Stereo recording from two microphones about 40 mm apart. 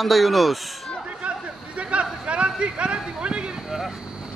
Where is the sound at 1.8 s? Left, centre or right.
Right.